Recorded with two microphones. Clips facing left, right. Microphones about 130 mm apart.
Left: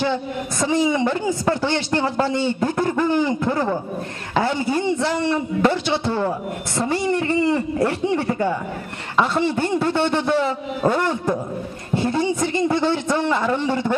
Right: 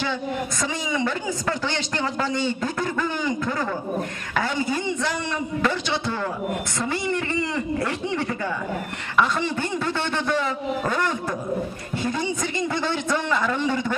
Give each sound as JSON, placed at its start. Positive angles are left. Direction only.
{"t": 0.6, "sound": "a man's voice", "side_deg": 15}